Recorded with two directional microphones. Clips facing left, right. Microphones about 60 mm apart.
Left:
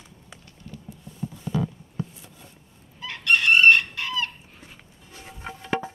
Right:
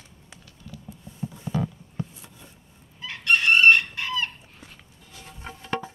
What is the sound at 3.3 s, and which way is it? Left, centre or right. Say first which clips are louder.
Chicken: even; centre.